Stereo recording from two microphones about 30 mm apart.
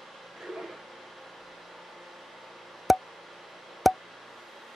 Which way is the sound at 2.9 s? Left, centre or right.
Centre.